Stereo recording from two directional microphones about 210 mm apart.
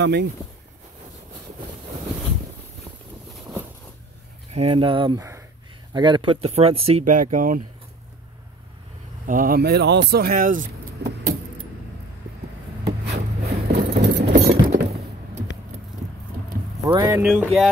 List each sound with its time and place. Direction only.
0.0 s speech: 55° right (ahead or behind)
4.6 s speech: 25° right (ahead or behind)
9.2 s speech: 40° right (ahead or behind)
11.0 s vehicle: 50° right (ahead or behind)
13.0 s a sound: 55° right (ahead or behind)
14.3 s a sound: 30° right (ahead or behind)
16.8 s speech: 15° right (ahead or behind)
17.3 s music: centre (ahead or behind)